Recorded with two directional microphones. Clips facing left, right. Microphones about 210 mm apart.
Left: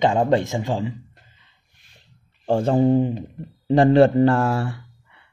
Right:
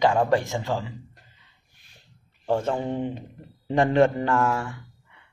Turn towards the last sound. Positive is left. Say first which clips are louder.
# left 4 dB
turn(degrees=35)  # may be behind; listen again after turning